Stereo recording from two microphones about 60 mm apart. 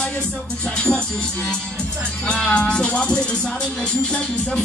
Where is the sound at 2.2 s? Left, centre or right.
Centre.